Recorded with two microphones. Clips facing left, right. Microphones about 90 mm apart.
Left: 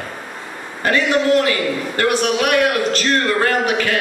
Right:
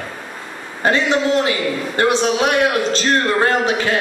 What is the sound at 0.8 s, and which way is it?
A man's voice, 25° right (ahead or behind).